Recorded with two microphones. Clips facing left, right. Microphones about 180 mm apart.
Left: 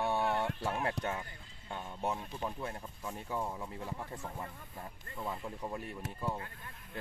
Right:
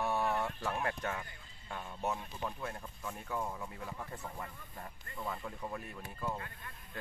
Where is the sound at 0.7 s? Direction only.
10° left (ahead or behind).